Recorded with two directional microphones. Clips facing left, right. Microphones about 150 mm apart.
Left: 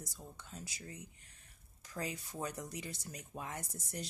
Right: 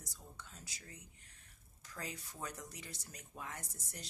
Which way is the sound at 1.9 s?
20° left (ahead or behind).